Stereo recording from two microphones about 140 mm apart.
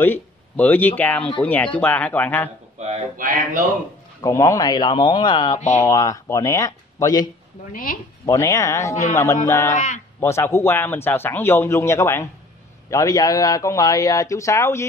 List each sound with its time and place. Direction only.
0.0 s speech: 15° left (ahead or behind)
2.8 s speech: 50° right (ahead or behind)
4.2 s speech: 25° left (ahead or behind)
7.7 s speech: 85° left
8.3 s speech: 20° left (ahead or behind)
9.7 s speech: 60° left (ahead or behind)
10.2 s speech: 20° left (ahead or behind)